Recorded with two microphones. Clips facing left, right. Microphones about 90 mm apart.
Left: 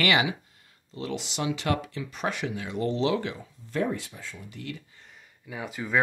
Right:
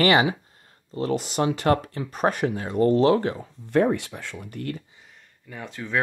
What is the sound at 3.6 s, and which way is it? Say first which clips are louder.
Speech: right 8 dB; 60° right (ahead or behind).